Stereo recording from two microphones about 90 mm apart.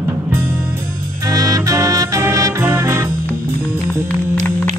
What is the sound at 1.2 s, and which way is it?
Music, 40° right (ahead or behind).